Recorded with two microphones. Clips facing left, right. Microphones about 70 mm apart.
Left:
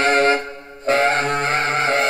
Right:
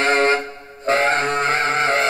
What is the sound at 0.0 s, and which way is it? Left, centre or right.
Music, right.